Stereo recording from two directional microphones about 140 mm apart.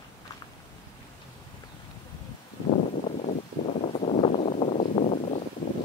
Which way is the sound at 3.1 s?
60° left (ahead or behind).